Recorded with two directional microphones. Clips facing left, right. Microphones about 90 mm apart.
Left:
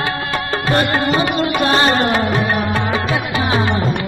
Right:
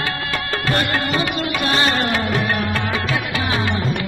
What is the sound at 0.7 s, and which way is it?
Music, 25° left (ahead or behind).